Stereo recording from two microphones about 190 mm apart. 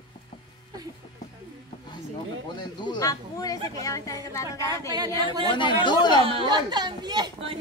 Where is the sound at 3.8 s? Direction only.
20° left (ahead or behind).